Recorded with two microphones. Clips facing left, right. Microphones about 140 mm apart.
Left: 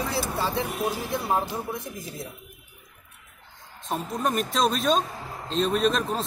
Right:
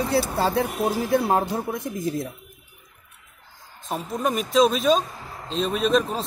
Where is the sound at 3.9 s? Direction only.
Centre (ahead or behind).